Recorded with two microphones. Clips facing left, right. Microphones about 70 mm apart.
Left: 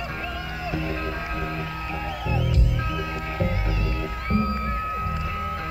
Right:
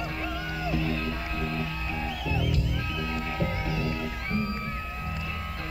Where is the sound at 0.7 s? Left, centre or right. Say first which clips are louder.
Left 1 dB; left.